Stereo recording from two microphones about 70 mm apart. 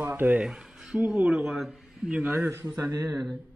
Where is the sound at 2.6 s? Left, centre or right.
Right.